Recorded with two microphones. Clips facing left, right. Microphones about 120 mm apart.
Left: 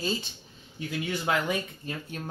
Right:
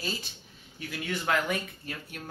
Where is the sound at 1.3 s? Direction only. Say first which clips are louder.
Even; 20° left (ahead or behind).